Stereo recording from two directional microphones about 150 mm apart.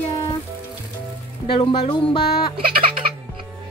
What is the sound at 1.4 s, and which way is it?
Speech, 35° left (ahead or behind).